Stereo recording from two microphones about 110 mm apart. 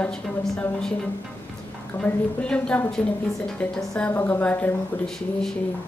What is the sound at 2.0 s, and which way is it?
A woman's voice, 10° left (ahead or behind).